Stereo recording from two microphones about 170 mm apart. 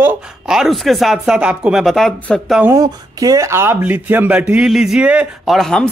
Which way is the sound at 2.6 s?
20° right (ahead or behind).